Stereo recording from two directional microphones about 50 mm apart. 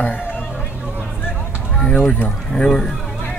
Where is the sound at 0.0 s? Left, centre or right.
Left.